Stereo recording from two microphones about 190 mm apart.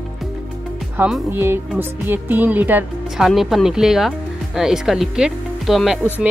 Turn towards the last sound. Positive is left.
turn(degrees=0)  # may be behind; listen again after turning